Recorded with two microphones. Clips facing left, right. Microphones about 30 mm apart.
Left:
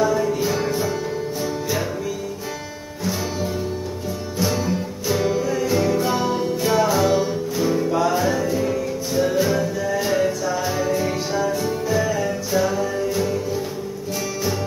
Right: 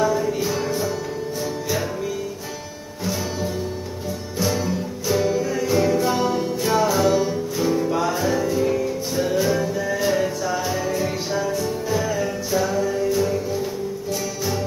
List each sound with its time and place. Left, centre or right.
0.5 s music: centre
4.4 s music: centre